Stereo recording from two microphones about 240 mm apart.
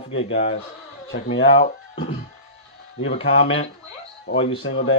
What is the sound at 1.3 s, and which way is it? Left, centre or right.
Speech, left.